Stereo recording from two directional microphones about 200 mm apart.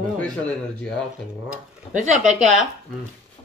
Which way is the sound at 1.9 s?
40° right (ahead or behind).